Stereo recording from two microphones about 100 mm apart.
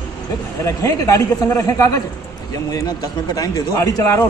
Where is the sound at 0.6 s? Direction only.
30° left (ahead or behind).